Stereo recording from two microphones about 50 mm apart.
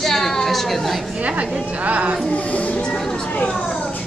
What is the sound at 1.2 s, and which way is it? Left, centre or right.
Speech, right.